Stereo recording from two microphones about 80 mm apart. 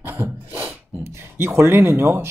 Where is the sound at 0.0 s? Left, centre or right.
Right.